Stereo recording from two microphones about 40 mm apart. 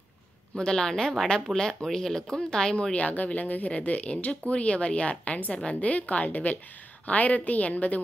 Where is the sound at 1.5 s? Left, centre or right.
Centre.